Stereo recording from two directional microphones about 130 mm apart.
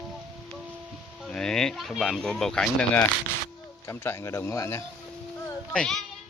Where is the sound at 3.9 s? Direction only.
20° left (ahead or behind).